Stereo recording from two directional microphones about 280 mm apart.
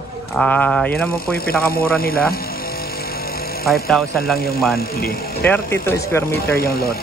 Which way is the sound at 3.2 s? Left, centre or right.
Left.